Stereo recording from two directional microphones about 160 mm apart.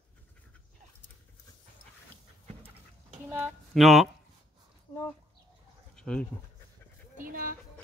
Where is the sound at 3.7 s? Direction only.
Centre (ahead or behind).